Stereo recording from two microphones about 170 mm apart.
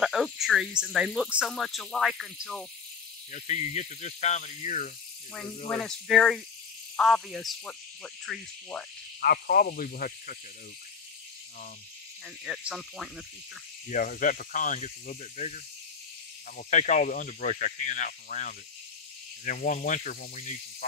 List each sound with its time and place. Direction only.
0.0 s speech: centre (ahead or behind)
3.3 s speech: 45° left (ahead or behind)
5.7 s speech: 5° left (ahead or behind)
9.2 s speech: 60° left (ahead or behind)
12.4 s speech: centre (ahead or behind)
13.8 s speech: 50° left (ahead or behind)